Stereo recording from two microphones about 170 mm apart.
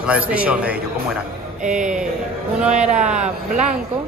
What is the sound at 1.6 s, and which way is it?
Speech, 45° right (ahead or behind).